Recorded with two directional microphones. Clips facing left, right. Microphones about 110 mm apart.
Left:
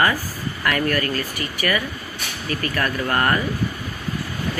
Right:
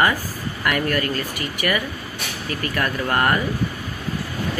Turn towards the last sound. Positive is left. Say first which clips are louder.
# even
turn(degrees=-15)  # may be behind; listen again after turning